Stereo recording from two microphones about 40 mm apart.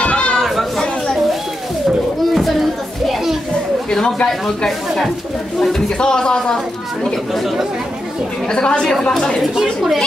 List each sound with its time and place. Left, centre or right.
0.0 s chatter: left
0.4 s chatter: centre
3.9 s speech: centre
5.9 s speech: left
8.5 s speech: left
9.4 s a woman's voice: centre